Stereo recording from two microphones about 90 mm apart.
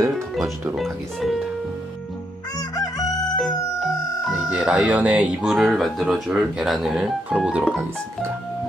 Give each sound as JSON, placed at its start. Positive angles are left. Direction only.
{"t": 0.7, "sound": "speech", "side_deg": 0}
{"t": 2.7, "sound": "chicken", "side_deg": 45}
{"t": 3.3, "sound": "music", "side_deg": 0}
{"t": 4.6, "sound": "speech", "side_deg": -10}
{"t": 5.5, "sound": "speech", "side_deg": 0}